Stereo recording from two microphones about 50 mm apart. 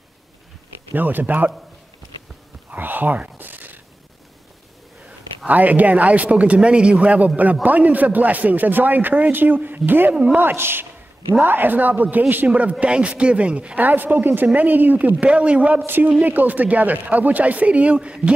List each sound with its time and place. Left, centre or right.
0.9 s a man's voice: right
2.7 s whispering: right
5.5 s a man's voice: right
10.5 s a woman's voice: right
12.4 s a man's voice: right
13.7 s a man's voice: right
15.2 s a man's voice: right